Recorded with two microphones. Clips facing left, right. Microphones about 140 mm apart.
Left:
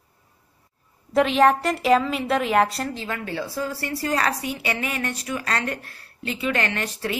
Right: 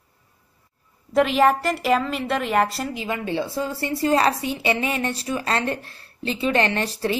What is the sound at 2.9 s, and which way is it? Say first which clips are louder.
A woman's voice: right 4 dB; 15° right (ahead or behind).